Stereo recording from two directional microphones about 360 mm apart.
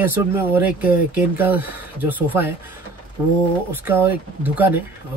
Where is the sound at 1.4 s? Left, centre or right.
Centre.